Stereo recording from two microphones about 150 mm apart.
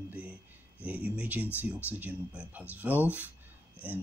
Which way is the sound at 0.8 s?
10° right (ahead or behind).